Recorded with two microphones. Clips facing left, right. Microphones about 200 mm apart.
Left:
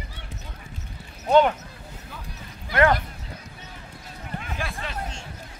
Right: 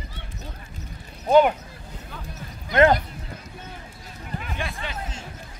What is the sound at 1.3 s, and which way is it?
Speech, 10° right (ahead or behind).